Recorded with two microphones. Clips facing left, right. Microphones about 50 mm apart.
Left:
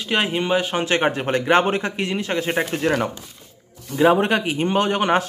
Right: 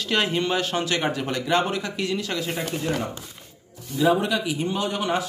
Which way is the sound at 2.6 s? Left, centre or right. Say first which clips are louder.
Left 6 dB; left.